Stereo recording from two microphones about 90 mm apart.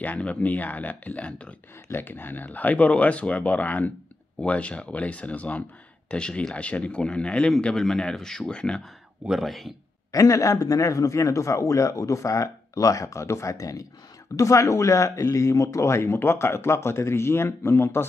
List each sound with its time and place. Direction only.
0.0 s speech: 15° left (ahead or behind)
10.1 s speech: 40° left (ahead or behind)